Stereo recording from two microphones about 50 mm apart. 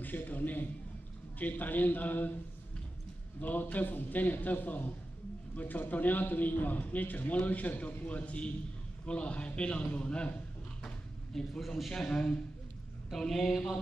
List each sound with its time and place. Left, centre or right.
0.0 s a man's voice: left
3.3 s a man's voice: left
11.6 s a man's voice: centre
13.1 s a man's voice: centre